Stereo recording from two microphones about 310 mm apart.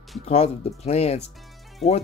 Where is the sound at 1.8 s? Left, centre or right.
Centre.